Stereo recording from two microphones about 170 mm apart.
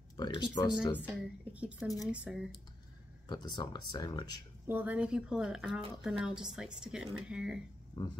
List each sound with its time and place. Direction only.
0.2 s speech: 25° left (ahead or behind)
1.0 s speech: 10° right (ahead or behind)
3.3 s speech: 25° left (ahead or behind)
4.6 s speech: 10° right (ahead or behind)
8.0 s speech: 25° left (ahead or behind)